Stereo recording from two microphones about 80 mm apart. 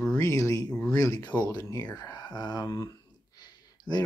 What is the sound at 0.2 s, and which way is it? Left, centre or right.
Speech, left.